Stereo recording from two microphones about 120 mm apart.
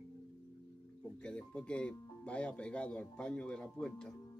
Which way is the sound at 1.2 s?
10° left (ahead or behind).